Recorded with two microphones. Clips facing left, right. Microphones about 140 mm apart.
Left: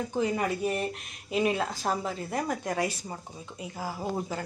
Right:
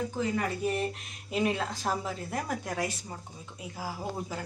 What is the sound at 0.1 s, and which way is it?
Speech, 20° left (ahead or behind).